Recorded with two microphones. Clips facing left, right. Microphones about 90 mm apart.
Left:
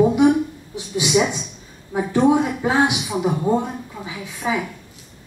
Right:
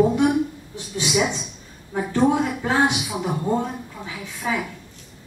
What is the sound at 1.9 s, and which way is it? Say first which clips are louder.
Speech: left 3 dB; 20° left (ahead or behind).